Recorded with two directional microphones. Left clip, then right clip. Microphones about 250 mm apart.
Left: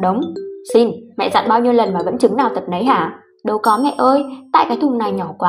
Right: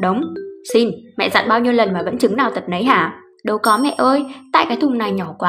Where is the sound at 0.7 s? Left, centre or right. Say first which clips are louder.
Left 2 dB; centre.